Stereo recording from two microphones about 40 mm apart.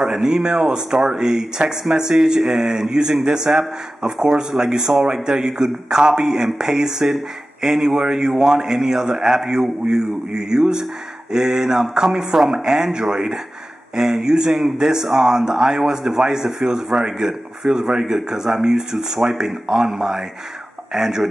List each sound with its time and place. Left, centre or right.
0.0 s speech: centre